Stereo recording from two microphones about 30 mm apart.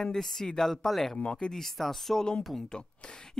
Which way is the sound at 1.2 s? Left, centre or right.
Left.